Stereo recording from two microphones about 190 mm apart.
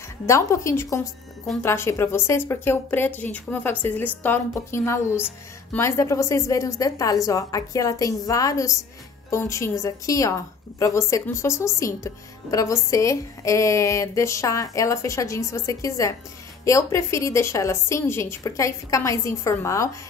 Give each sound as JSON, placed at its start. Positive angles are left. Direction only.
{"t": 0.3, "sound": "a woman's voice", "side_deg": 15}